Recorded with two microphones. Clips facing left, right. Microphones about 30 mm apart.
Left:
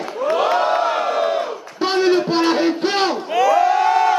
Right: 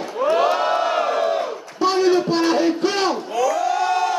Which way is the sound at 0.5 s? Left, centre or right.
Centre.